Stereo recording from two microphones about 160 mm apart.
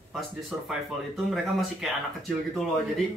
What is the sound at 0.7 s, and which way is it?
Speech, centre (ahead or behind).